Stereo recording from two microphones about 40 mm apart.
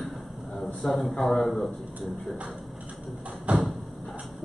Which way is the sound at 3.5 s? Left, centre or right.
Right.